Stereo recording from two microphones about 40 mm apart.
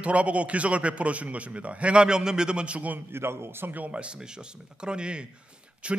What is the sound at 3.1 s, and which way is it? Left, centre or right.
Speech, right.